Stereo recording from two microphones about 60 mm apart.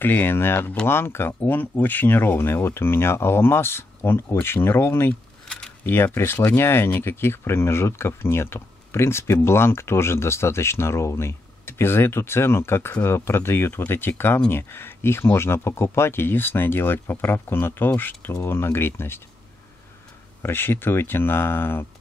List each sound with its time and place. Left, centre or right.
0.0 s speech: left
6.1 s speech: left
20.4 s speech: left